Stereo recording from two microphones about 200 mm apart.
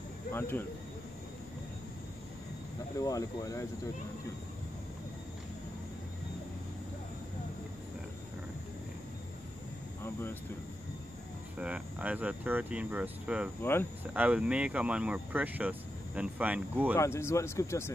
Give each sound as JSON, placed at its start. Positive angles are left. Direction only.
{"t": 0.3, "sound": "speech", "side_deg": 10}
{"t": 3.0, "sound": "speech", "side_deg": 15}
{"t": 11.5, "sound": "speech", "side_deg": -5}
{"t": 13.6, "sound": "speech", "side_deg": 10}
{"t": 14.1, "sound": "speech", "side_deg": -5}
{"t": 16.9, "sound": "speech", "side_deg": 15}